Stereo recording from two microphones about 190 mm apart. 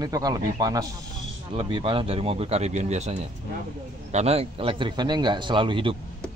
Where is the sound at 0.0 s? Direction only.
20° right (ahead or behind).